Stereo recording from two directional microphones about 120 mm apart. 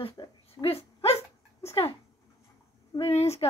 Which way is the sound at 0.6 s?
55° left (ahead or behind).